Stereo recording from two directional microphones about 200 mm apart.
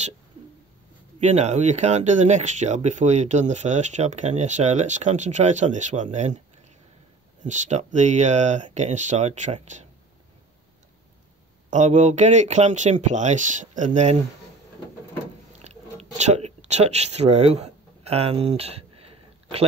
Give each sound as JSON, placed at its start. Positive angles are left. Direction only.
{"t": 1.2, "sound": "speech", "side_deg": -35}
{"t": 7.4, "sound": "speech", "side_deg": -35}
{"t": 11.7, "sound": "speech", "side_deg": -35}
{"t": 15.6, "sound": "a sound", "side_deg": -35}